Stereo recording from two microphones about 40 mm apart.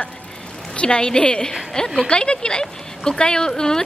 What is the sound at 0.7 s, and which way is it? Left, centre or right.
A woman's voice, left.